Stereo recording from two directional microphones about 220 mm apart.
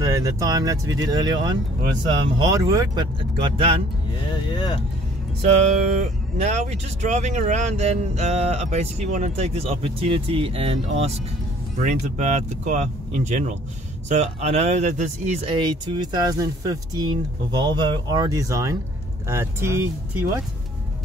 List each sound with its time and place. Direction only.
0.0 s speech: 15° right (ahead or behind)
4.3 s speech: 20° left (ahead or behind)
5.9 s speech: 30° right (ahead or behind); by 20.2 s 10° right (ahead or behind)